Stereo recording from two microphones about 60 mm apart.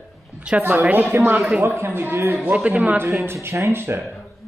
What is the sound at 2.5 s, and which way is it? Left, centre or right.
Speech, right.